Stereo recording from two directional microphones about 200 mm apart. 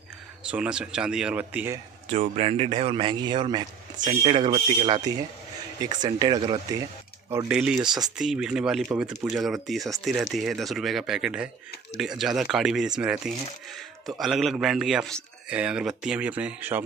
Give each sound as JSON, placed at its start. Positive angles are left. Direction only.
{"t": 0.5, "sound": "a man's voice", "side_deg": -5}
{"t": 2.0, "sound": "a man's voice", "side_deg": -30}
{"t": 7.2, "sound": "a man's voice", "side_deg": -10}